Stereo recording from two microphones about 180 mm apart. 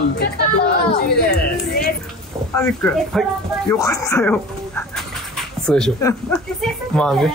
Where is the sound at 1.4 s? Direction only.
60° left (ahead or behind).